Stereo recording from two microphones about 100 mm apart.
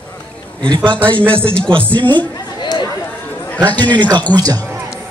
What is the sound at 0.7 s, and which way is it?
Speech, 50° right (ahead or behind).